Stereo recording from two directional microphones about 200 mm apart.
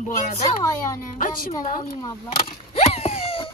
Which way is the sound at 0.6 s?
15° left (ahead or behind).